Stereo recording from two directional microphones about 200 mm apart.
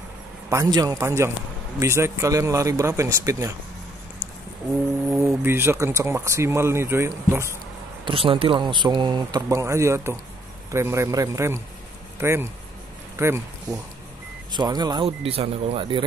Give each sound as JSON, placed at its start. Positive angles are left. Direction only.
{"t": 0.5, "sound": "speech", "side_deg": -15}
{"t": 5.2, "sound": "speech", "side_deg": -10}
{"t": 8.0, "sound": "speech", "side_deg": -25}